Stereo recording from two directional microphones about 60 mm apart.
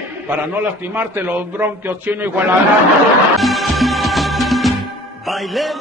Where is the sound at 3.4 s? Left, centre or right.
Centre.